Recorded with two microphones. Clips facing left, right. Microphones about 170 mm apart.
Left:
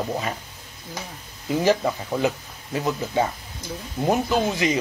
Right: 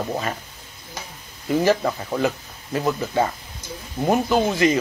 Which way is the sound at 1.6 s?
15° left (ahead or behind).